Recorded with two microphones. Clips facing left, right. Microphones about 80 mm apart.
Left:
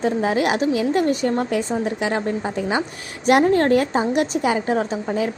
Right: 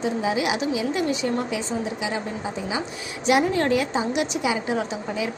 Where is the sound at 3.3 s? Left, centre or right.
Left.